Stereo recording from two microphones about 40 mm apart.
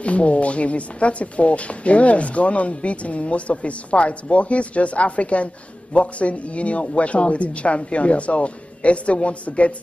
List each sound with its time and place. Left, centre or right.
0.0 s speech: left